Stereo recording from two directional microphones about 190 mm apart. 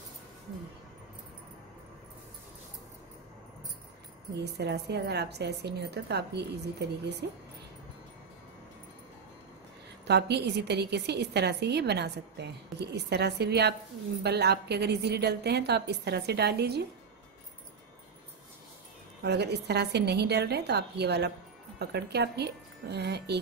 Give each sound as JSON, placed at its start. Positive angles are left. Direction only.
{"t": 4.6, "sound": "a woman's voice", "side_deg": -60}
{"t": 10.0, "sound": "a woman's voice", "side_deg": -60}
{"t": 19.2, "sound": "a woman's voice", "side_deg": -60}